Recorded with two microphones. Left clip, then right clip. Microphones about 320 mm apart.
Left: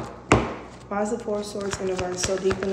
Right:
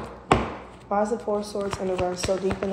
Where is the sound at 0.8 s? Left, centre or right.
Centre.